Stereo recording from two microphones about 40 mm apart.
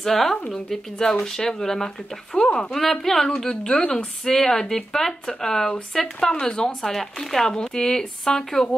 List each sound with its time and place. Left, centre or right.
0.0 s a woman's voice: centre
2.7 s speech: centre
3.4 s a woman's voice: left
6.8 s speech: centre
7.4 s speech: centre